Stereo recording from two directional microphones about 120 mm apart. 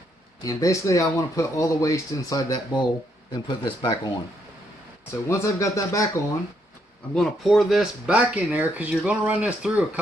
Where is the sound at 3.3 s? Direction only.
40° left (ahead or behind).